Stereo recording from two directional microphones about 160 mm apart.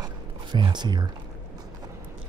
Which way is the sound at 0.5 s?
30° right (ahead or behind).